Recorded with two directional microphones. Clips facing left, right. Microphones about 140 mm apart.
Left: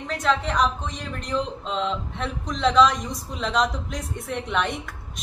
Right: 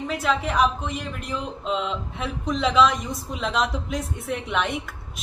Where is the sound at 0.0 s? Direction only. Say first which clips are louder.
Even; 5° right (ahead or behind).